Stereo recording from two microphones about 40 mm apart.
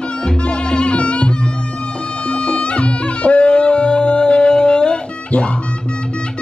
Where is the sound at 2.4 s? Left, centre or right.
Left.